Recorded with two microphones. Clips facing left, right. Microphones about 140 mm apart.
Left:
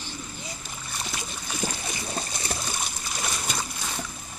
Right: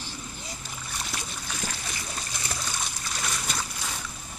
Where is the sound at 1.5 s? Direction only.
20° left (ahead or behind).